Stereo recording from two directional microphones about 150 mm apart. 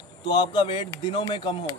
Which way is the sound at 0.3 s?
30° left (ahead or behind).